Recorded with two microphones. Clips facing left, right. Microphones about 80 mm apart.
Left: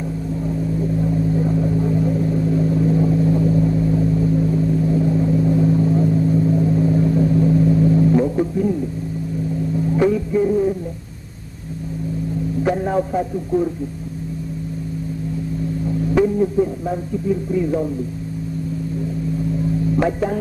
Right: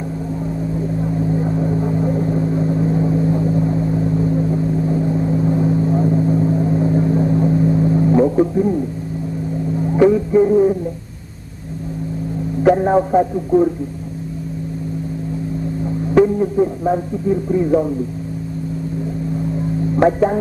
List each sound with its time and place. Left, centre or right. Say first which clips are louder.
0.5 s vehicle: left 2 dB; centre
9.8 s music: right 5 dB; right
12.7 s radio: right 6 dB; right
16.3 s speech: right 1 dB; right
20.0 s speech: right 8 dB; right